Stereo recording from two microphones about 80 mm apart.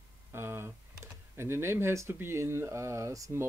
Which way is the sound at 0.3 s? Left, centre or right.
Right.